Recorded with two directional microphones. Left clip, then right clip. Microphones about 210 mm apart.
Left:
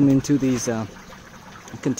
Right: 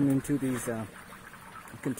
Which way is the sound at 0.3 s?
10° left (ahead or behind).